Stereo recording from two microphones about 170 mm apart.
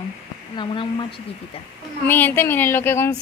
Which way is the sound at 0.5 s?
30° left (ahead or behind).